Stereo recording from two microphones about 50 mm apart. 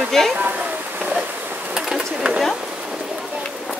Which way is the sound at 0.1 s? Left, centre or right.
Centre.